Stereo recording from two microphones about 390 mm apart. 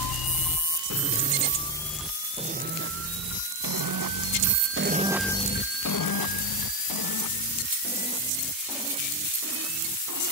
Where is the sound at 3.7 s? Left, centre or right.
Right.